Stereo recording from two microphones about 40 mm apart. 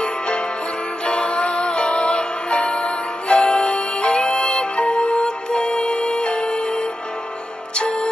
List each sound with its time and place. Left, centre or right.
1.0 s music: left